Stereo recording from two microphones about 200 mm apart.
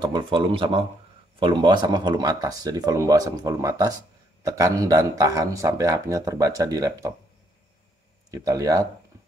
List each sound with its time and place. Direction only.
0.0 s speech: 25° right (ahead or behind)
8.3 s speech: 15° right (ahead or behind)